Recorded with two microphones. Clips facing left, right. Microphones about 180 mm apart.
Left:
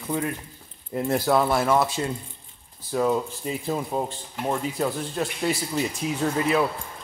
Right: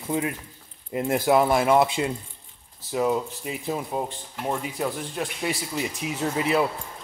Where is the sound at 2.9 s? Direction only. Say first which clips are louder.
Left 1 dB; 5° right (ahead or behind).